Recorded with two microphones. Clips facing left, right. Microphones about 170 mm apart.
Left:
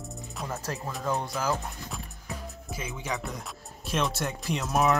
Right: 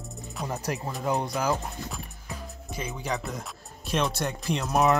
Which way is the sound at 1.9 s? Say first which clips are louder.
Even; centre (ahead or behind).